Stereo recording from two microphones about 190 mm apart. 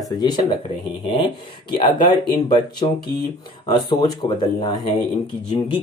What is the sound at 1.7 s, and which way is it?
Speech, 25° left (ahead or behind).